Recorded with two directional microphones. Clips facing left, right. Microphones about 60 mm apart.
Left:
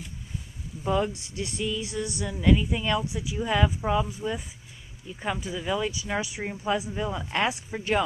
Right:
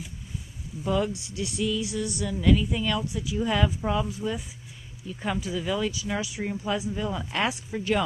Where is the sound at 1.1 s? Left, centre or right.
Left.